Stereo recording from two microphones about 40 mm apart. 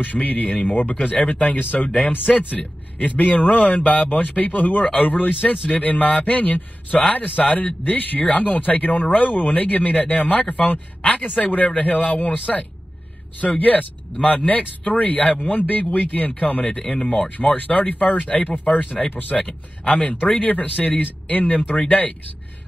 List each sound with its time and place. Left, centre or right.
0.0 s a man's voice: left
4.1 s speech: left
12.5 s speech: centre
13.4 s speech: left